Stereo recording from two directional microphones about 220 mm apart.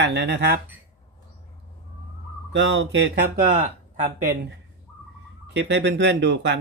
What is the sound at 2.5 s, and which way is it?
Speech, 55° right (ahead or behind).